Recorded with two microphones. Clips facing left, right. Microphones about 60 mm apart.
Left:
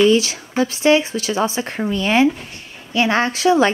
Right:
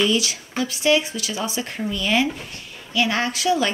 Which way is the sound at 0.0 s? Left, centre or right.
Left.